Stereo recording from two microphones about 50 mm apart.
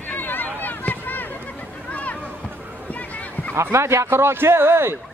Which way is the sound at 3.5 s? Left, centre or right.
Right.